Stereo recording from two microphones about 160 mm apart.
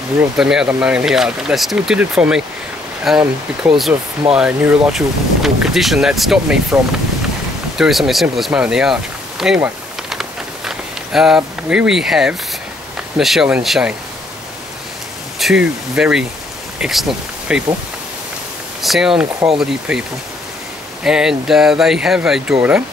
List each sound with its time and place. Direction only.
0.4 s speech: 5° right (ahead or behind)
3.9 s speech: 15° right (ahead or behind)
10.0 s a sound: 5° right (ahead or behind)
13.2 s speech: centre (ahead or behind)
15.3 s speech: 5° right (ahead or behind)
18.8 s speech: centre (ahead or behind)